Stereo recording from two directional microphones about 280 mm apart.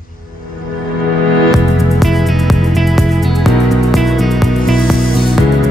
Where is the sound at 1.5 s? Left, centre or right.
Centre.